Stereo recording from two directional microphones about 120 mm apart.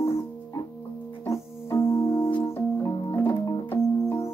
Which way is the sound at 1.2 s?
25° left (ahead or behind).